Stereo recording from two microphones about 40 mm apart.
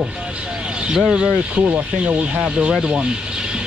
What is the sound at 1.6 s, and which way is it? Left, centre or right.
Speech, right.